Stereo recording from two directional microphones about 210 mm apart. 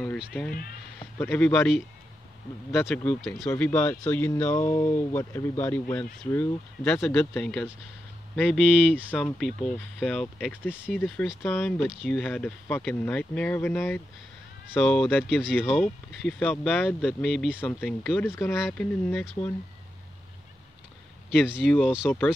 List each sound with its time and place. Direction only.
0.2 s speech: 5° left (ahead or behind)
0.5 s speech: 45° left (ahead or behind)
0.9 s speech: 10° left (ahead or behind)
3.0 s speech: 5° left (ahead or behind)
21.3 s speech: 5° right (ahead or behind)